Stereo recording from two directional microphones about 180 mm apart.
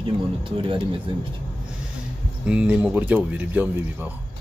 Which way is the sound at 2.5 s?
5° right (ahead or behind).